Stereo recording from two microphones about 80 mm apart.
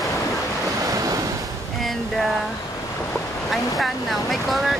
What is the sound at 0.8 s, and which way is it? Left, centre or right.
Waves, right.